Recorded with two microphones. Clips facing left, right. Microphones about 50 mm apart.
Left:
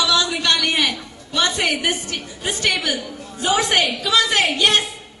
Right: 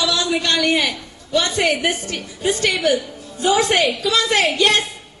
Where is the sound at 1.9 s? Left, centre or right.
Left.